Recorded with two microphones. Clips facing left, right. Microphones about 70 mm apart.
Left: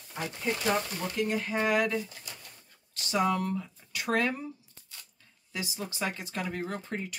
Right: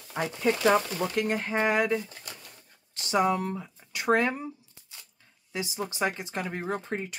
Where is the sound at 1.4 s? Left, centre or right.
Right.